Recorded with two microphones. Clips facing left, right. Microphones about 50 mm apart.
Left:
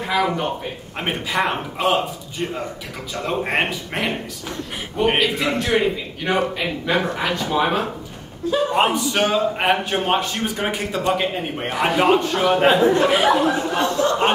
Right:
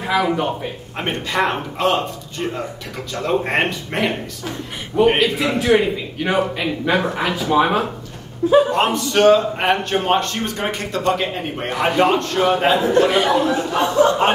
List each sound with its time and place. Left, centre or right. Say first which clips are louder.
0.0 s a man's voice: right 2 dB; centre
8.4 s a man's voice: right 8 dB; right
8.7 s a man's voice: right 1 dB; centre